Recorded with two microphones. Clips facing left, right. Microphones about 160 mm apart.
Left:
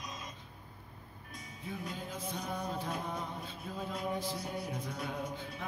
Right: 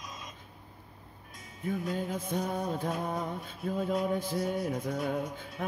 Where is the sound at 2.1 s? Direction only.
50° right (ahead or behind).